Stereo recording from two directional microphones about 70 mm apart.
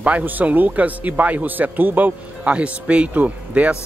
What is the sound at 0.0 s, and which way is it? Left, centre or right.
Speech, right.